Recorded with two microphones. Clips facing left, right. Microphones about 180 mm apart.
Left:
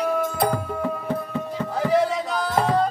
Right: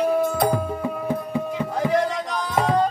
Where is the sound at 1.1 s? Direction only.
10° right (ahead or behind).